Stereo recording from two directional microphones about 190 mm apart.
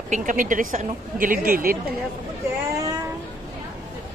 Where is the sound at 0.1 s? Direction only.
45° right (ahead or behind).